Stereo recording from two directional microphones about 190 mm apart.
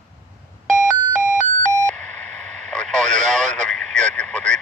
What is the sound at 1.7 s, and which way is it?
Radio, 5° left (ahead or behind).